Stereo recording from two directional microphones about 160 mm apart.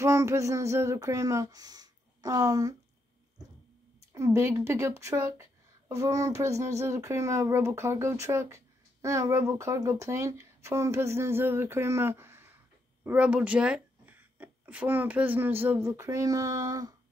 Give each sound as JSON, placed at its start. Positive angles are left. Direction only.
{"t": 0.0, "sound": "speech", "side_deg": -20}
{"t": 4.1, "sound": "speech", "side_deg": -20}